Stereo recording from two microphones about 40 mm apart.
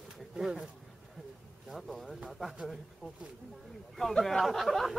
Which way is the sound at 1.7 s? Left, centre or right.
Centre.